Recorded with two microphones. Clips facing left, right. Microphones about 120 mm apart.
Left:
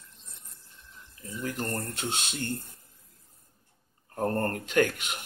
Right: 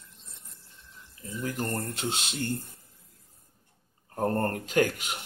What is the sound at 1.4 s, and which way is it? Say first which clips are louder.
Speech: right 1 dB; 25° right (ahead or behind).